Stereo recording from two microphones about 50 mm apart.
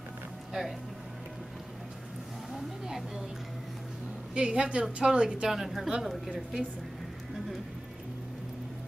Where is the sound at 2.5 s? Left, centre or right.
Centre.